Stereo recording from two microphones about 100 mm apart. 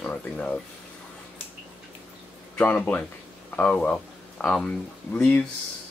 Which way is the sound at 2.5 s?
15° left (ahead or behind).